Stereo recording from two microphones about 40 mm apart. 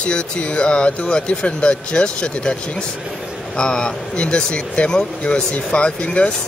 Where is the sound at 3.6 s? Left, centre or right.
Centre.